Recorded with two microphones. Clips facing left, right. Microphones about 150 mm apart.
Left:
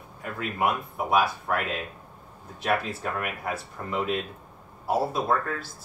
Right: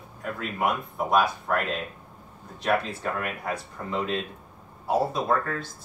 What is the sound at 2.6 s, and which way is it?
Speech, 5° left (ahead or behind).